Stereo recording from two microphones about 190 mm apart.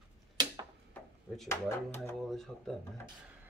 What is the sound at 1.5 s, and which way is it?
Speech, 15° left (ahead or behind).